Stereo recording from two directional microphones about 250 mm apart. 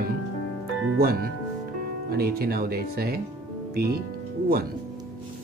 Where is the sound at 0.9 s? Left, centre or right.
Right.